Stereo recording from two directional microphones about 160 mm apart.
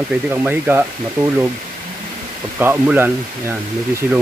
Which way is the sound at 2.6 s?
15° right (ahead or behind).